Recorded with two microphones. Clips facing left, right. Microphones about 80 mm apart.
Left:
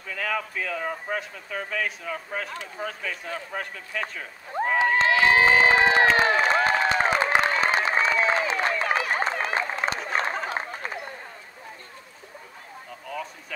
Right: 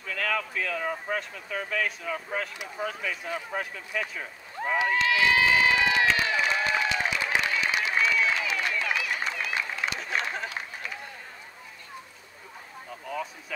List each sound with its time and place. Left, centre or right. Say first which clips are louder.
0.0 s speech: left 1 dB; centre
4.7 s run: left 3 dB; left
10.4 s a sound: left 5 dB; left